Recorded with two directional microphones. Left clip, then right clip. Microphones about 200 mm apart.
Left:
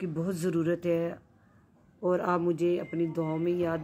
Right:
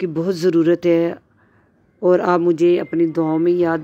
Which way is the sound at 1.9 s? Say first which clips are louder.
Right 13 dB; 35° right (ahead or behind).